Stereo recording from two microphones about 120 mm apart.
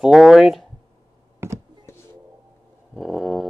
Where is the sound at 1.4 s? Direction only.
20° right (ahead or behind).